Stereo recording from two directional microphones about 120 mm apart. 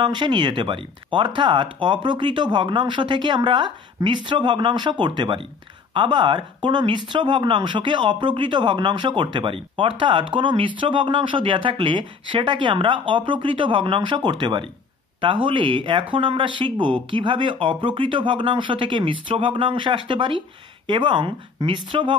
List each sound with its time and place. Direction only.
0.0 s speech: 40° right (ahead or behind)